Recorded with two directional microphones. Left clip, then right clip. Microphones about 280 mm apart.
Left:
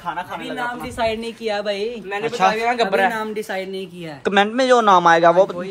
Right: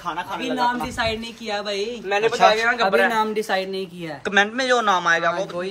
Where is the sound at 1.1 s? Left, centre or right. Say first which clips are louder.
Left 3 dB; left.